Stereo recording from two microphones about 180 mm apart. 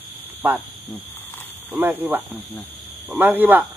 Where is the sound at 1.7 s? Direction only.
10° right (ahead or behind).